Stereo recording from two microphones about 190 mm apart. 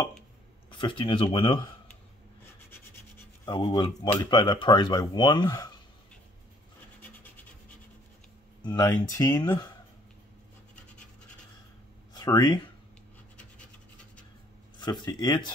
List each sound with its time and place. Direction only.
0.7 s speech: 25° left (ahead or behind)
3.4 s speech: 25° left (ahead or behind)
8.6 s speech: 15° left (ahead or behind)
12.1 s a sound: 20° left (ahead or behind)
14.8 s speech: 20° left (ahead or behind)